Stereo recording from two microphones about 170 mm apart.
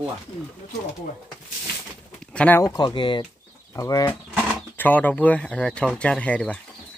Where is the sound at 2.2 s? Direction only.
5° left (ahead or behind).